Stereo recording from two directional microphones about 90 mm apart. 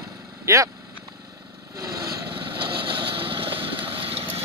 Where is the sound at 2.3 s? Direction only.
60° right (ahead or behind); by 4.4 s 90° right.